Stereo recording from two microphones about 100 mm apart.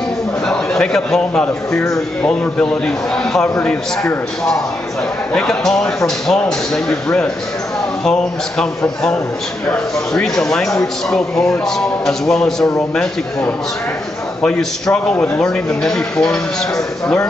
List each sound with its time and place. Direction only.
0.5 s a man's voice: 5° left (ahead or behind)
5.3 s a man's voice: 5° left (ahead or behind)